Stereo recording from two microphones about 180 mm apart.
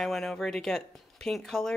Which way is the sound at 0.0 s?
Centre (ahead or behind).